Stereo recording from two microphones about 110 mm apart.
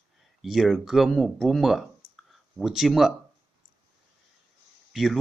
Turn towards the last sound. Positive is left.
turn(degrees=0)  # may be behind; listen again after turning